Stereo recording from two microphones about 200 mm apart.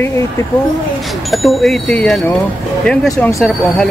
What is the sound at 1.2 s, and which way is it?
Speech, centre (ahead or behind).